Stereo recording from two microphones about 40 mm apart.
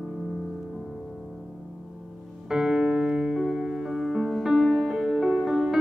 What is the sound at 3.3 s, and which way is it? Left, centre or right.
Music, centre.